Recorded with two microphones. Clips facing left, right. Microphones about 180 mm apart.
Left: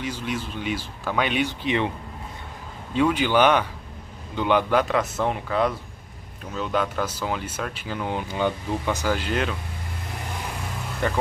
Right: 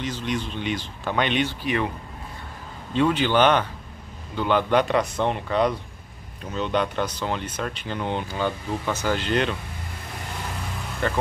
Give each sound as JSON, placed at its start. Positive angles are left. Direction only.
{"t": 0.0, "sound": "speech", "side_deg": 10}
{"t": 1.6, "sound": "speech", "side_deg": 20}
{"t": 2.9, "sound": "speech", "side_deg": 10}
{"t": 4.7, "sound": "speech", "side_deg": 0}
{"t": 8.3, "sound": "speech", "side_deg": 15}
{"t": 11.0, "sound": "speech", "side_deg": 15}